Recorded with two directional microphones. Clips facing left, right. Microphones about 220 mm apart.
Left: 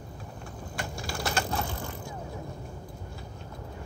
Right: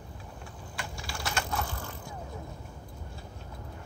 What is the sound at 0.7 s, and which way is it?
Typing, 45° left (ahead or behind).